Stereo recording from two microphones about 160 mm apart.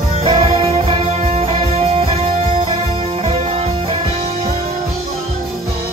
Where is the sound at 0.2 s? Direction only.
35° right (ahead or behind).